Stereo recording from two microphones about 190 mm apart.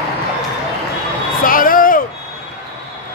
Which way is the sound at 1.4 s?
45° left (ahead or behind).